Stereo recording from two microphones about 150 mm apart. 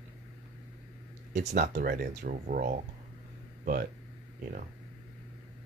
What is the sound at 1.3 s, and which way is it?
Speech, 50° right (ahead or behind).